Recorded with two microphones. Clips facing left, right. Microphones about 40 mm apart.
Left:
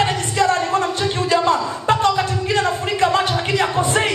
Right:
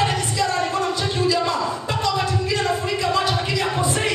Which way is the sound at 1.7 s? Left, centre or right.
Left.